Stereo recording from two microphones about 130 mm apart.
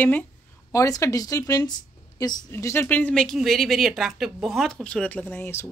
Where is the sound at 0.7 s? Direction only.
25° left (ahead or behind).